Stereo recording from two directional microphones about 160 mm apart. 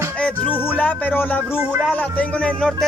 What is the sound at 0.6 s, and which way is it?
Speech, 10° left (ahead or behind).